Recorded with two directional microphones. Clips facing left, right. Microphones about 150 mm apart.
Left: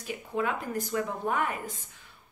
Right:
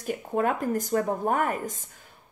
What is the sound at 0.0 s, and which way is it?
Speech, 50° right (ahead or behind).